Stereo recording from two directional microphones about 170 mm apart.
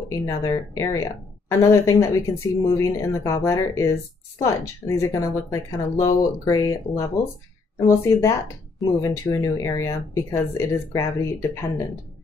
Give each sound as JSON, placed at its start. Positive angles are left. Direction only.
{"t": 0.2, "sound": "speech", "side_deg": 15}